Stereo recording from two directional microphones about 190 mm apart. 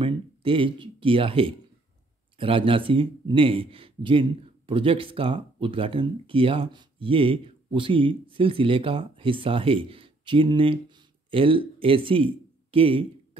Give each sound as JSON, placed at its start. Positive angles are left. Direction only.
{"t": 0.0, "sound": "speech", "side_deg": -30}